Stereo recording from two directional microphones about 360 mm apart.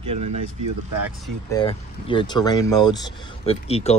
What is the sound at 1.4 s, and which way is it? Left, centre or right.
Speech, centre.